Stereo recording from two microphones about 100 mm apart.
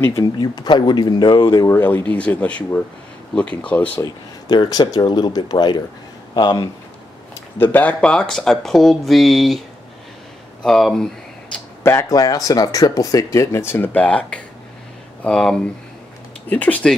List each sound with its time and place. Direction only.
0.2 s speech: 45° left (ahead or behind)
1.7 s speech: 25° left (ahead or behind)
4.0 s speech: 45° left (ahead or behind)
7.5 s speech: 20° left (ahead or behind)
8.0 s speech: 10° left (ahead or behind)
10.6 s speech: 5° left (ahead or behind)
11.8 s speech: 25° left (ahead or behind)
12.2 s speech: 40° left (ahead or behind); by 16.9 s 15° left (ahead or behind)